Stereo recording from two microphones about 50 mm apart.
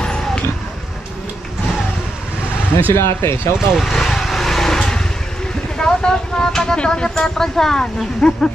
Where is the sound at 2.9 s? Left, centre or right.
Left.